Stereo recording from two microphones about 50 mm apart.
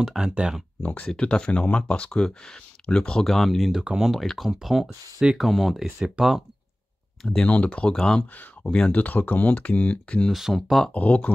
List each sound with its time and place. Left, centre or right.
0.0 s speech: centre
0.8 s speech: left
3.3 s speech: centre
3.8 s speech: centre
4.4 s speech: centre
7.4 s speech: left
8.9 s speech: left
10.5 s speech: centre
10.9 s speech: left